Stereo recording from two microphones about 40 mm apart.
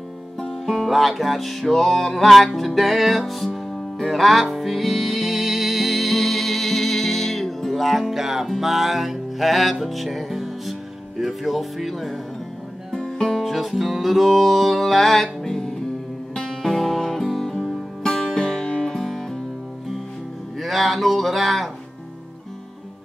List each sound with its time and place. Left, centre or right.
0.4 s music: centre
0.8 s music: centre
12.9 s music: centre
13.5 s music: centre
18.9 s music: centre
20.5 s speech: centre